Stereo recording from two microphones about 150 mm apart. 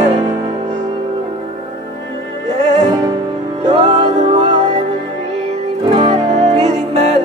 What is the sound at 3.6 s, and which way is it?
Music, 45° right (ahead or behind).